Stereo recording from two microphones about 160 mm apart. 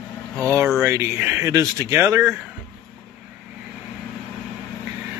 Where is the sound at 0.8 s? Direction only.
15° right (ahead or behind).